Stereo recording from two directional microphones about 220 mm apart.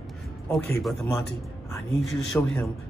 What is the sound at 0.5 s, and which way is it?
A man's voice, centre (ahead or behind).